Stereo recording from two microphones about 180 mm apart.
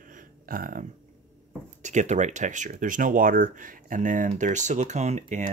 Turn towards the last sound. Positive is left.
turn(degrees=-40)  # may be behind; listen again after turning